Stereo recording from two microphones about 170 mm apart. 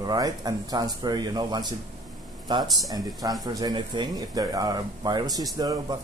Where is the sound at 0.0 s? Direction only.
20° right (ahead or behind).